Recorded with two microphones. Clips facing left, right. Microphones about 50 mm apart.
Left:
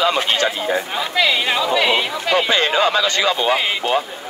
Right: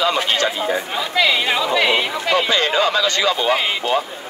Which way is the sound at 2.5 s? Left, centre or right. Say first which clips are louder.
Left 1 dB; left.